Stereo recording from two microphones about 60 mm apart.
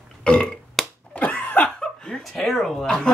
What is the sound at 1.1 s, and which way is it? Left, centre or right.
Cough, left.